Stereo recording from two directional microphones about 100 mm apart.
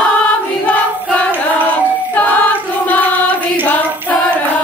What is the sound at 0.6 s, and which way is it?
Choir, 15° left (ahead or behind).